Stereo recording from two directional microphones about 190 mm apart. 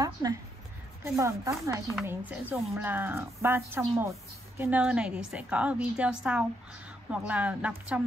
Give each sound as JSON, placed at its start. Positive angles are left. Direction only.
{"t": 0.0, "sound": "a woman's voice", "side_deg": -20}